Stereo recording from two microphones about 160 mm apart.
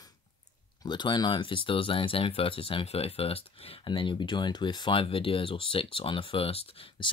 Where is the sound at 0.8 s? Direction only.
30° left (ahead or behind).